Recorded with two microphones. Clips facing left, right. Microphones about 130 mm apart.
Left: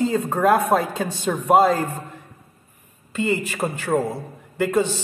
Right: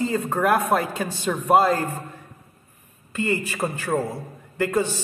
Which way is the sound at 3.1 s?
20° left (ahead or behind).